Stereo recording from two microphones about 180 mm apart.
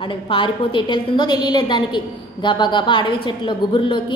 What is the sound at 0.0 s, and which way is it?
A woman's voice, 30° left (ahead or behind).